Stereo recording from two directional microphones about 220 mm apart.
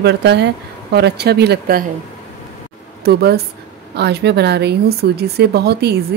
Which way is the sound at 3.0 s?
45° right (ahead or behind).